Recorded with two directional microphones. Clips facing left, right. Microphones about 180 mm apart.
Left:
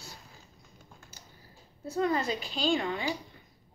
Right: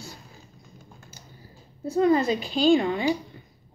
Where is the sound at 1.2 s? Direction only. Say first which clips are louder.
Right 5 dB; 15° right (ahead or behind).